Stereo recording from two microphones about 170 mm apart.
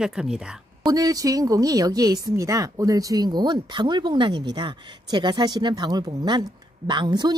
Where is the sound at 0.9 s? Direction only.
20° right (ahead or behind).